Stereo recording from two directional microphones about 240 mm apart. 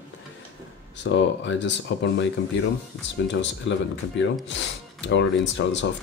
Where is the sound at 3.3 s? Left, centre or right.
Left.